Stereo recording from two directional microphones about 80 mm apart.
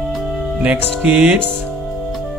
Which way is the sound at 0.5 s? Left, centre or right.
Centre.